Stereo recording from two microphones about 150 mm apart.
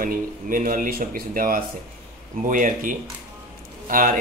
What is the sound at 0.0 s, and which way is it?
Speech, 65° right (ahead or behind).